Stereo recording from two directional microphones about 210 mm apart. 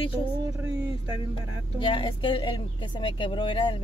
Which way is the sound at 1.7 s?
20° left (ahead or behind).